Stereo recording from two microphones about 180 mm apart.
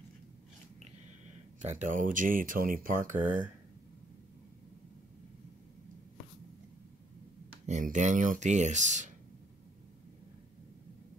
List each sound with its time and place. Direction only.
1.6 s speech: 40° right (ahead or behind)
7.6 s speech: 40° right (ahead or behind)